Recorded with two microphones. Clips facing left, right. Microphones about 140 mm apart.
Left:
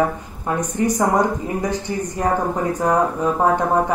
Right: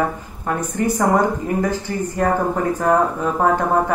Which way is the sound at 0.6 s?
15° left (ahead or behind).